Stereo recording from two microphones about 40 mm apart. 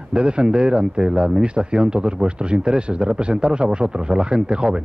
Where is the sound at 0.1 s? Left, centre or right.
Right.